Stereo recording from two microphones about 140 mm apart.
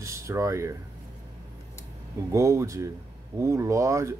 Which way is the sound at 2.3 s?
20° right (ahead or behind).